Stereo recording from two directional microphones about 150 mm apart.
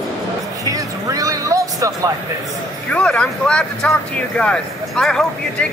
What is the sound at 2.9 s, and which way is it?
Speech, 5° left (ahead or behind).